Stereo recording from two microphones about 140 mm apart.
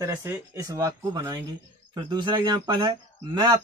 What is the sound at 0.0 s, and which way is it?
Speech, 20° right (ahead or behind).